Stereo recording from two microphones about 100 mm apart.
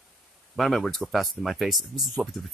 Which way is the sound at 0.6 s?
5° left (ahead or behind).